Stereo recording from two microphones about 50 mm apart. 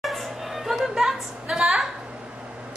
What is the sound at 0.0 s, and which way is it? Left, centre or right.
Music, centre.